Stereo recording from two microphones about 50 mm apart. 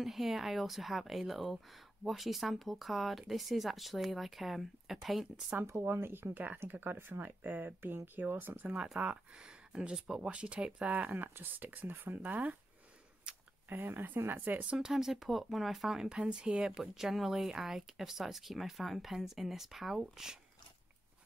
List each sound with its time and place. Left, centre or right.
0.0 s speech: centre
5.8 s speech: right
8.9 s speech: right
10.9 s speech: right
13.3 s a sound: centre
13.7 s speech: right
14.8 s speech: centre